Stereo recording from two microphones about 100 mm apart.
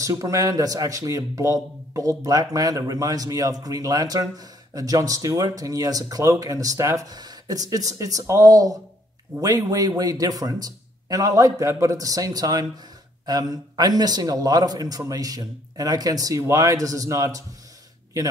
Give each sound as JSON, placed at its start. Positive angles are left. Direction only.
{"t": 0.0, "sound": "a man's voice", "side_deg": -35}